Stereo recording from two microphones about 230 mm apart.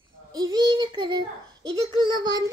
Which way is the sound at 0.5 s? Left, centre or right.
Centre.